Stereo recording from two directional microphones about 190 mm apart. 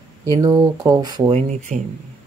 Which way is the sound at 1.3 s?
40° right (ahead or behind).